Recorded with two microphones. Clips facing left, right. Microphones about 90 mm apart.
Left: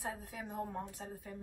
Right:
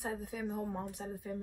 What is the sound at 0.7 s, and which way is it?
Speech, 15° right (ahead or behind).